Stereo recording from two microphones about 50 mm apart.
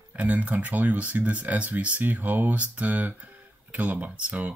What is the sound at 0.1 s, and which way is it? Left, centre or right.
Speech, right.